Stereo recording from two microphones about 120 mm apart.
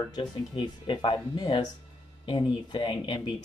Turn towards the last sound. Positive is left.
turn(degrees=40)  # may be behind; listen again after turning